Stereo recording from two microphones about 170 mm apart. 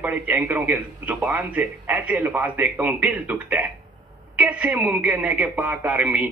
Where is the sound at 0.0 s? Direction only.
10° right (ahead or behind).